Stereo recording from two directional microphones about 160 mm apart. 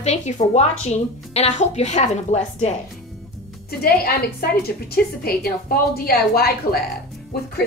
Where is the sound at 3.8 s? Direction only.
70° left (ahead or behind).